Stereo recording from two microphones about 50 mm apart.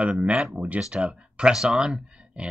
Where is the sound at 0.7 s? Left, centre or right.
Centre.